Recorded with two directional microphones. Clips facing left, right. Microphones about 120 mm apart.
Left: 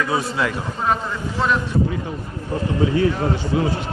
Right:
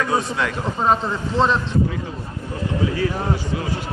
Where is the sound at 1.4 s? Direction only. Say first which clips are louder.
Right 2 dB; 25° right (ahead or behind).